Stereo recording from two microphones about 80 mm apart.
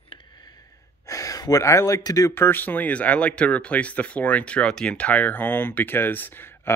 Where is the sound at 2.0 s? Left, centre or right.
Left.